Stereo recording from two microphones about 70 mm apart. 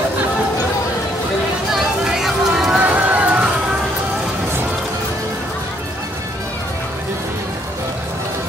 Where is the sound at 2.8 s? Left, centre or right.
Right.